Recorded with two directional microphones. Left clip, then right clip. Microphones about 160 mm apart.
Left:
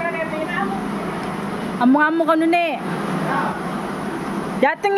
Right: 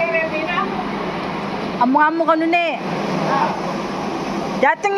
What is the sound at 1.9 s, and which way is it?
Speech, 45° left (ahead or behind).